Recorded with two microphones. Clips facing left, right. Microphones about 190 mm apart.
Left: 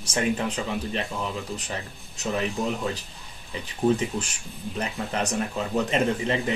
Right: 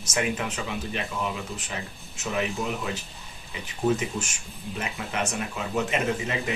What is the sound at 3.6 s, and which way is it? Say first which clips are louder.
Speech: left 2 dB; 35° left (ahead or behind).